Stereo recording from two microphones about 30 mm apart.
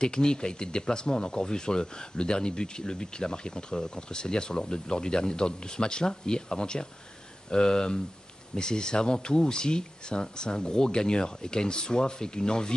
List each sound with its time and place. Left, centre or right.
0.0 s speech: left